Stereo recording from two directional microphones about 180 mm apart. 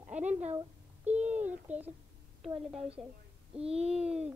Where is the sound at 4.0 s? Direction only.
5° right (ahead or behind).